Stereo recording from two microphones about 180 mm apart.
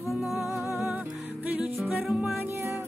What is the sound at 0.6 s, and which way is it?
Music, 15° right (ahead or behind).